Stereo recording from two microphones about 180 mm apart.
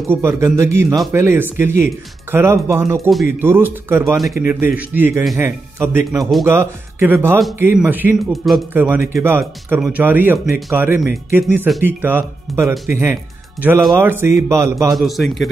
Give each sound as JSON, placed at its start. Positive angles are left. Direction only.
{"t": 0.1, "sound": "speech", "side_deg": -15}
{"t": 8.7, "sound": "speech", "side_deg": -10}
{"t": 15.0, "sound": "a man's voice", "side_deg": 0}